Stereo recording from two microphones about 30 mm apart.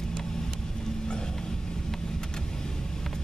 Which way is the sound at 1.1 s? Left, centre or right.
Left.